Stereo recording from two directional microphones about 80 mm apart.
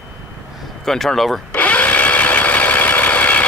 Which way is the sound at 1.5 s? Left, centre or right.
Centre.